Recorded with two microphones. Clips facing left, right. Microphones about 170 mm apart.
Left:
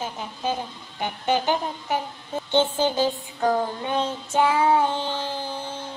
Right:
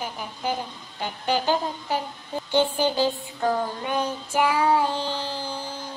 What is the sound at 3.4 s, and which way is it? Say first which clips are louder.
Child singing: left 2 dB; 25° left (ahead or behind).